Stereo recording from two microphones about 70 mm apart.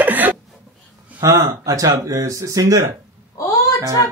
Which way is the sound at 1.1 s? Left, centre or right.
Right.